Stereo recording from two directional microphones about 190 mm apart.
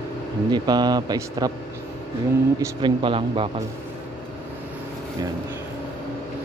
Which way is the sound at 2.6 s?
25° right (ahead or behind).